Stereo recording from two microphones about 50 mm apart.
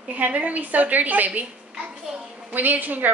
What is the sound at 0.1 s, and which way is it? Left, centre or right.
A woman's voice, right.